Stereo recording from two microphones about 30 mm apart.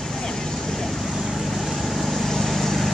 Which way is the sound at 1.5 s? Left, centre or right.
Centre.